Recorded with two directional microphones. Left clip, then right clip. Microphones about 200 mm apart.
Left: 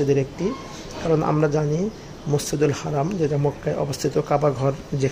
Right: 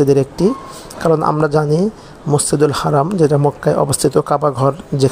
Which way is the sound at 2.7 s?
20° right (ahead or behind).